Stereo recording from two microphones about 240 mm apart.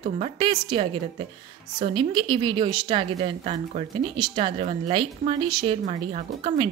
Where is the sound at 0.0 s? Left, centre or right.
Right.